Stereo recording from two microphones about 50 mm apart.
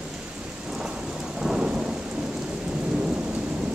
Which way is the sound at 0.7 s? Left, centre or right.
Centre.